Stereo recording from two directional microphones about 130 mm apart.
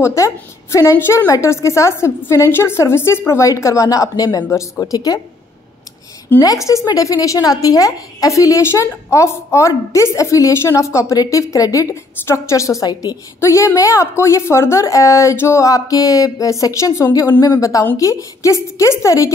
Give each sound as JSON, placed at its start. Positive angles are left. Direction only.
{"t": 0.0, "sound": "a woman's voice", "side_deg": 20}
{"t": 6.4, "sound": "a woman's voice", "side_deg": 25}